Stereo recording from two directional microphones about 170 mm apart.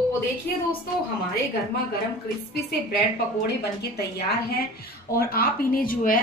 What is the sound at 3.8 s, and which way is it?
A woman's voice, 70° left (ahead or behind).